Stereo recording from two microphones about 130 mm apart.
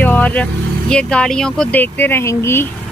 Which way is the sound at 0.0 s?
10° left (ahead or behind).